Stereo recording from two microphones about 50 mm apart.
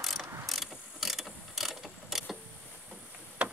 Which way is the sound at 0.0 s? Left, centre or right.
Centre.